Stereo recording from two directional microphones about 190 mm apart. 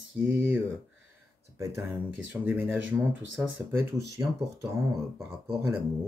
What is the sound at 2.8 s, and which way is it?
Speech, 85° right.